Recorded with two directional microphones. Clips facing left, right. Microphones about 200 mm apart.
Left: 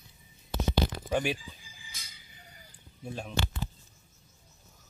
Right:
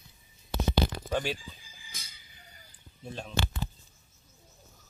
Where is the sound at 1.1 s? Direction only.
15° left (ahead or behind).